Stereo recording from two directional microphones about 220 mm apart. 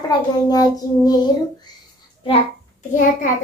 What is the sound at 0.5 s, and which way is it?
Child singing, 15° left (ahead or behind).